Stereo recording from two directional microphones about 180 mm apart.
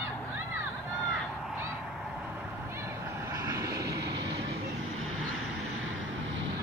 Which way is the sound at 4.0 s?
70° right (ahead or behind).